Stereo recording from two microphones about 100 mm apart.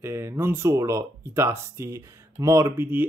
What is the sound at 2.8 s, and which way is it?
Speech, 20° right (ahead or behind).